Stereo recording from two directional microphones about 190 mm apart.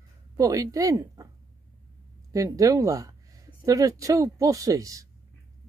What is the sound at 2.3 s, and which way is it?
Speech, 20° right (ahead or behind).